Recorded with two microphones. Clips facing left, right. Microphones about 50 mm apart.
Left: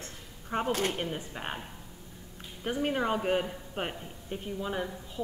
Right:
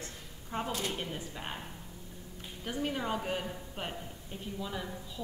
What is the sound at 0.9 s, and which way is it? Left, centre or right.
Speech, left.